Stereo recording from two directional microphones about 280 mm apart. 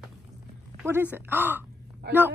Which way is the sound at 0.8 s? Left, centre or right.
Centre.